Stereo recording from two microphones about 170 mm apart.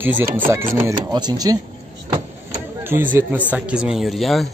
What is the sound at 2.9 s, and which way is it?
A man's voice, 10° right (ahead or behind).